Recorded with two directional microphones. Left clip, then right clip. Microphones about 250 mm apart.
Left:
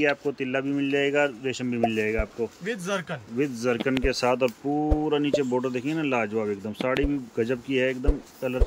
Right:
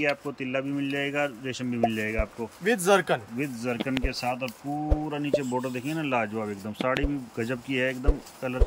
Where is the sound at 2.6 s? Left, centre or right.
Right.